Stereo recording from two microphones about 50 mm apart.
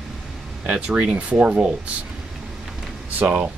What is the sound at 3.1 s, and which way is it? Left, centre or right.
Speech, right.